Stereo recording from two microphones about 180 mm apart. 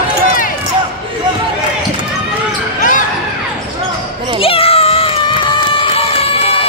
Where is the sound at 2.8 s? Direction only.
45° left (ahead or behind).